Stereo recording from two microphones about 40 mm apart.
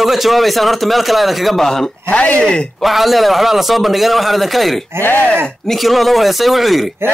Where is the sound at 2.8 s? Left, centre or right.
Centre.